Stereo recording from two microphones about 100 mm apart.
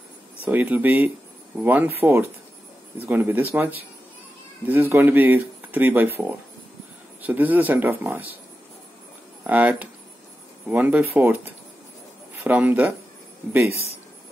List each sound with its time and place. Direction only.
0.5 s speech: 20° right (ahead or behind)
9.4 s speech: 15° right (ahead or behind)